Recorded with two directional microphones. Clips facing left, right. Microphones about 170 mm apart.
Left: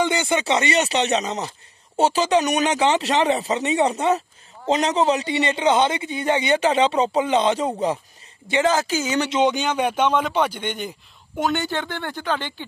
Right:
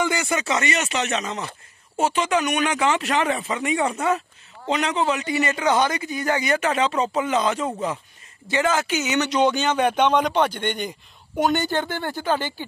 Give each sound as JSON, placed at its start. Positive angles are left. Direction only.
{"t": 0.0, "sound": "a man's voice", "side_deg": 25}
{"t": 9.4, "sound": "speech", "side_deg": 15}